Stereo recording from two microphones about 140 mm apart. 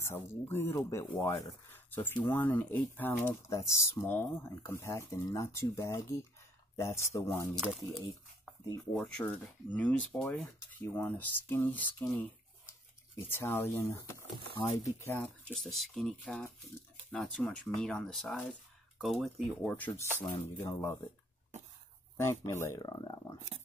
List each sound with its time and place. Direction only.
0.0 s speech: 15° left (ahead or behind)
7.6 s speech: 5° right (ahead or behind)
8.9 s speech: 10° left (ahead or behind)
13.3 s speech: 15° left (ahead or behind)
15.2 s speech: 5° left (ahead or behind)
19.7 s speech: 15° left (ahead or behind)
22.1 s speech: 20° left (ahead or behind)